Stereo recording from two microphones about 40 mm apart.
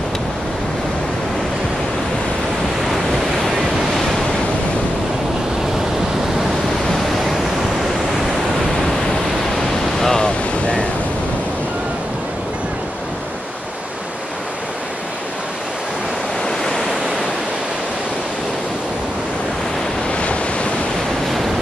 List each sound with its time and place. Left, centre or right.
9.9 s ocean: centre
10.2 s a sound: left
16.4 s waves: centre